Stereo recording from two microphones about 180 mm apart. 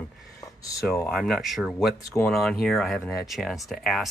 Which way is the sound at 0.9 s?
5° left (ahead or behind).